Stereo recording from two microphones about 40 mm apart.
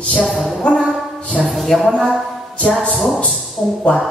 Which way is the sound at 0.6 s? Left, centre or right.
Left.